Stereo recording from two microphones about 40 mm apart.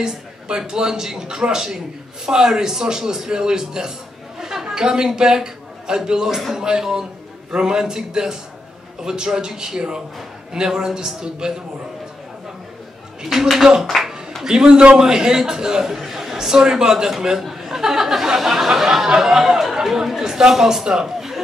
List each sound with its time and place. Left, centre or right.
0.0 s a man's voice: centre
13.2 s speech: centre
13.8 s a man's voice: centre